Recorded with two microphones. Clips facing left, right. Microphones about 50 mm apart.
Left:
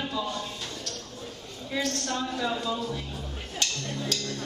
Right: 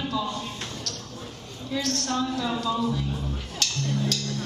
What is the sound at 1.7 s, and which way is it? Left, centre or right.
Speech, left.